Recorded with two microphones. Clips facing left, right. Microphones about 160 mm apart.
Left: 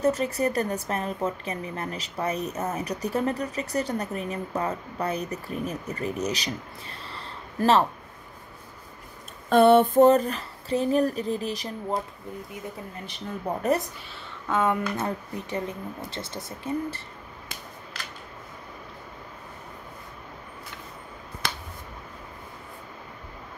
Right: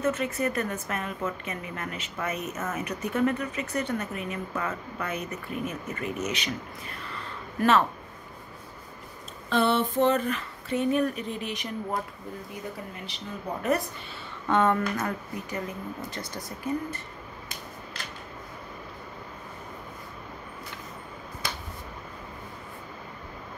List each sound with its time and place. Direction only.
0.0 s speech: 35° left (ahead or behind)
9.5 s speech: 50° left (ahead or behind)
13.0 s speech: 50° left (ahead or behind)
14.5 s speech: 10° left (ahead or behind)
14.8 s speech: 25° left (ahead or behind)